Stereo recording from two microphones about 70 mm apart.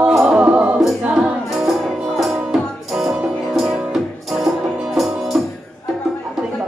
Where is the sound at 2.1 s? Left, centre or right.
Centre.